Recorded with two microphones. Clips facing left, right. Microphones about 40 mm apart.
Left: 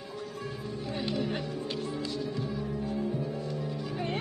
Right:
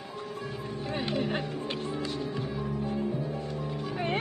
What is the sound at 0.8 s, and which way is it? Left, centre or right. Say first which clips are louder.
Music: right 2 dB; right.